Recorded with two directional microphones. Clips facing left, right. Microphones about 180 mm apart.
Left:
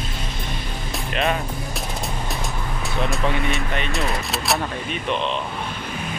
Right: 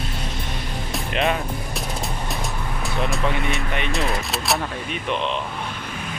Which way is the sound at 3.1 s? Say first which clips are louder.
Left 1 dB; centre (ahead or behind).